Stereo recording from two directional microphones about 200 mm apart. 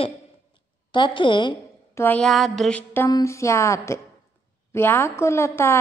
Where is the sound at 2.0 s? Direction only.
5° left (ahead or behind).